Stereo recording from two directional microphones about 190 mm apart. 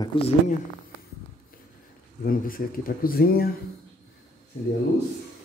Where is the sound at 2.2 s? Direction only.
50° left (ahead or behind).